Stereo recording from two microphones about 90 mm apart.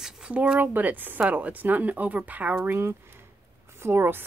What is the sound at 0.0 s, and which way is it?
Speech, 15° right (ahead or behind).